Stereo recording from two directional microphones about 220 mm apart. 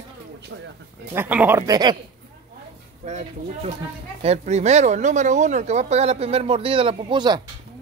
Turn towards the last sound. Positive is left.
turn(degrees=-20)  # may be behind; listen again after turning